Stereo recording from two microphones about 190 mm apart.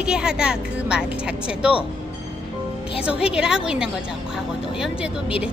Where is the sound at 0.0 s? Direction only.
5° right (ahead or behind).